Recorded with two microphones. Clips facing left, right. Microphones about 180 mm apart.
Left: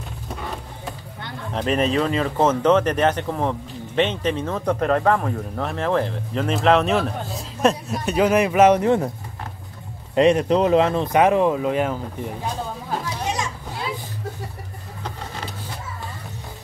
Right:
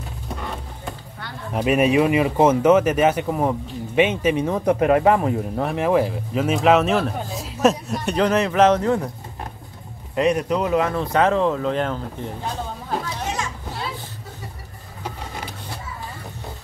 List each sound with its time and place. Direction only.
1.5 s speech: 10° right (ahead or behind); by 8.9 s 10° left (ahead or behind)
10.1 s speech: 25° left (ahead or behind); by 12.3 s 10° left (ahead or behind)